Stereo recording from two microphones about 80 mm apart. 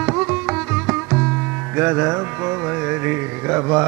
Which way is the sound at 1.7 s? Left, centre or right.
Right.